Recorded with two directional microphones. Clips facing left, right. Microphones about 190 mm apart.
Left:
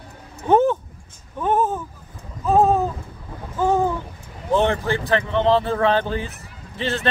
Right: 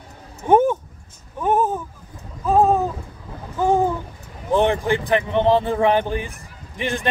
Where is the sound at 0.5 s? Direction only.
10° right (ahead or behind).